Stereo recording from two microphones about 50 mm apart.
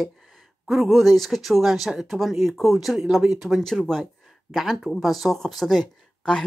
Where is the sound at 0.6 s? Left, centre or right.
Centre.